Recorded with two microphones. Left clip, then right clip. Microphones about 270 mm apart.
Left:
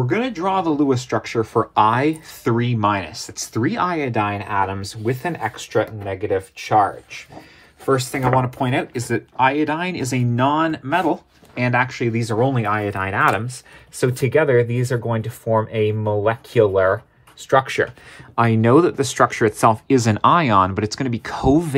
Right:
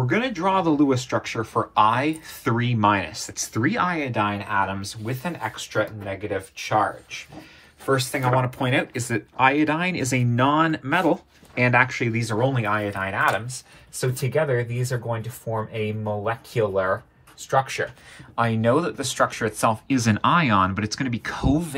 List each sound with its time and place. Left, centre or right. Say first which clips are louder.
0.0 s speech: left 2 dB; left